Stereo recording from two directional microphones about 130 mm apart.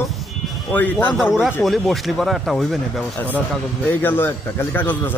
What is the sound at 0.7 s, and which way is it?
Speech, 15° left (ahead or behind).